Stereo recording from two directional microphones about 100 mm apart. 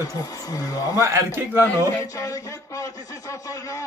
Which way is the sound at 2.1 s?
35° left (ahead or behind).